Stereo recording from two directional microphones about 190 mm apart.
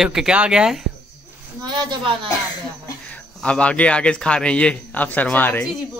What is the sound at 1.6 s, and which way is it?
Speech, 25° right (ahead or behind).